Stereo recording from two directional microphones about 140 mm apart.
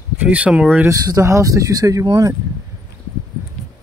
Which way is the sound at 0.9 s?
25° right (ahead or behind).